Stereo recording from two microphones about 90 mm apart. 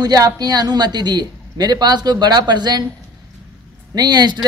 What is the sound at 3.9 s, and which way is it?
Speech, 50° right (ahead or behind).